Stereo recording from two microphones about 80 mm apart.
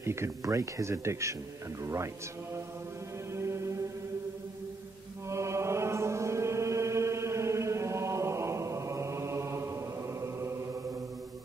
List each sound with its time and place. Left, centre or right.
0.0 s speech: right
3.3 s chant: right
5.3 s music: right
10.2 s chant: right